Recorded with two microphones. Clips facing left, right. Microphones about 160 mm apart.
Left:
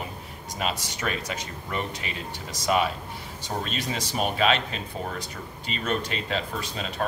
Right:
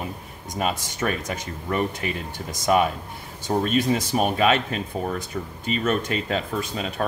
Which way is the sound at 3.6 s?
50° right (ahead or behind).